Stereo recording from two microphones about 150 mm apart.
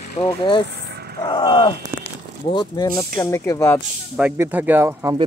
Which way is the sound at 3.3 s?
20° left (ahead or behind).